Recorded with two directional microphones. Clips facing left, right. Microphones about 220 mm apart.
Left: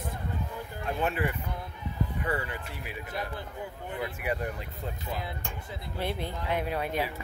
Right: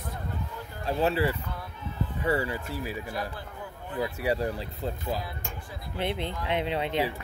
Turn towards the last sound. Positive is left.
turn(degrees=-25)  # may be behind; listen again after turning